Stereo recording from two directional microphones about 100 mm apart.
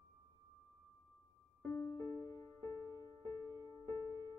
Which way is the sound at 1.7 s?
20° left (ahead or behind).